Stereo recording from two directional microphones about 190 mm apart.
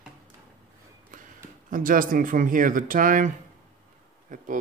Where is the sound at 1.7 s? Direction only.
45° right (ahead or behind).